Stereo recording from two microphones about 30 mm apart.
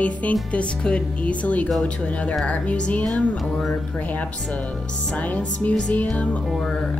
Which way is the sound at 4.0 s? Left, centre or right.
Left.